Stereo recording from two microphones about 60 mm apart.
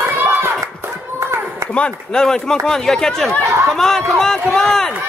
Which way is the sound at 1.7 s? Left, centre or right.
Centre.